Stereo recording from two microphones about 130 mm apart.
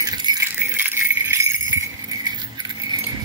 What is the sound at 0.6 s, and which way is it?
Jingle bell, 15° right (ahead or behind).